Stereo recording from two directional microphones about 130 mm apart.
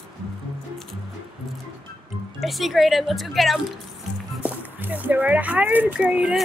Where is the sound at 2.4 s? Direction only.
Centre (ahead or behind).